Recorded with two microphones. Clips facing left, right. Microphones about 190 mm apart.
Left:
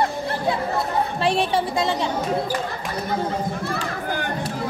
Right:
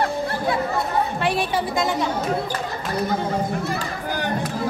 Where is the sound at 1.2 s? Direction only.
30° left (ahead or behind).